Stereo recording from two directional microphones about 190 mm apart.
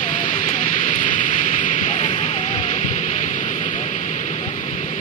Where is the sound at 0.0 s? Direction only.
40° left (ahead or behind).